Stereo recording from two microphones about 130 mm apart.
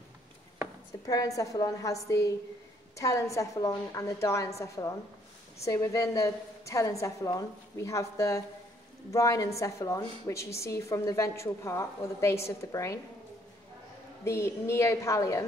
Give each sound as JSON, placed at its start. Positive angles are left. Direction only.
{"t": 1.0, "sound": "a woman's voice", "side_deg": 25}
{"t": 14.2, "sound": "a woman's voice", "side_deg": 20}